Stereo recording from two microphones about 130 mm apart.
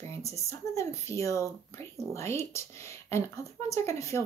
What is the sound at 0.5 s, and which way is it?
Speech, 20° left (ahead or behind).